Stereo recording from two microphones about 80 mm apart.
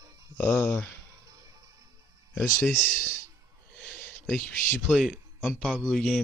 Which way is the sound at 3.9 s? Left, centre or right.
Left.